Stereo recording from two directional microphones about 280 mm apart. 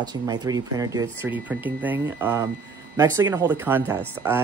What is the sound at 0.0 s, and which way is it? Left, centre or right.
Speech, centre.